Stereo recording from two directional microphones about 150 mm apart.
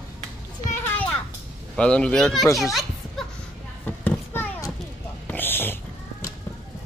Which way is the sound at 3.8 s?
10° left (ahead or behind).